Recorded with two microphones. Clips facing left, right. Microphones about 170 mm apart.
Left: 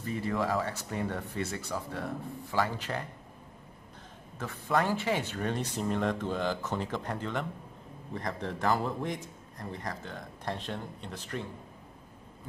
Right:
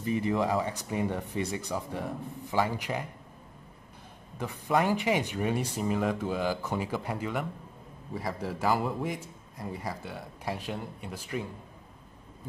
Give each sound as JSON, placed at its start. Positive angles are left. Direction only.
{"t": 0.0, "sound": "a man's voice", "side_deg": -15}
{"t": 4.4, "sound": "a man's voice", "side_deg": -15}